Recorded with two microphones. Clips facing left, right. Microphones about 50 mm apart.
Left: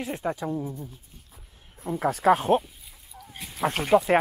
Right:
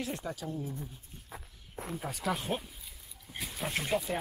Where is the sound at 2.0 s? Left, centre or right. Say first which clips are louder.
Left 14 dB; left.